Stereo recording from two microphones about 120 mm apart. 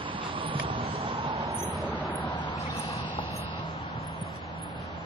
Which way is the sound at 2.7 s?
60° left (ahead or behind).